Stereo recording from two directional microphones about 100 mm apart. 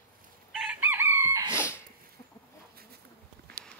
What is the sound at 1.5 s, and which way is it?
Dog, 25° left (ahead or behind).